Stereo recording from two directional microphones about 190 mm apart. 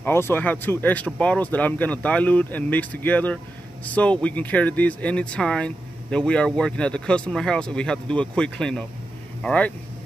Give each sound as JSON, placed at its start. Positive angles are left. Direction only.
{"t": 0.0, "sound": "speech", "side_deg": 10}